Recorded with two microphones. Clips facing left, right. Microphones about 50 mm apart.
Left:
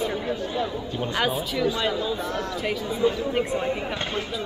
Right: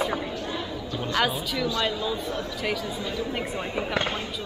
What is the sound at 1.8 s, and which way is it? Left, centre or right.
Speech, centre.